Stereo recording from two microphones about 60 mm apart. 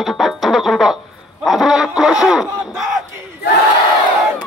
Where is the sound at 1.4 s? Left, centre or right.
Centre.